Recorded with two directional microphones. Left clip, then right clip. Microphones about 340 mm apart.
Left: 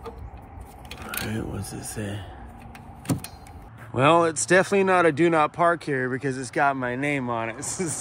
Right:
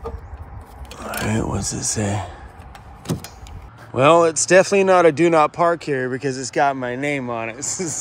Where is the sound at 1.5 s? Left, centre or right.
Centre.